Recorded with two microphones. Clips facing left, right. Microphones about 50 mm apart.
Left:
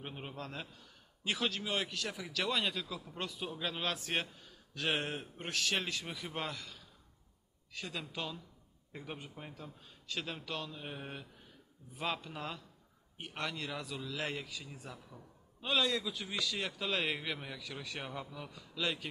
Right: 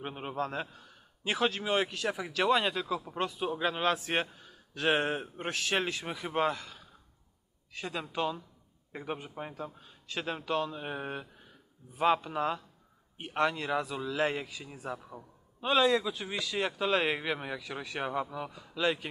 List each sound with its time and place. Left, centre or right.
0.0 s a man's voice: right